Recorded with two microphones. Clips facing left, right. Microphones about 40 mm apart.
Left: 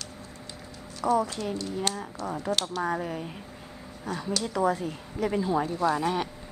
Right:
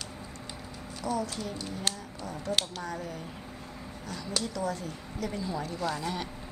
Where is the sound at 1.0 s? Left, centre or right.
Left.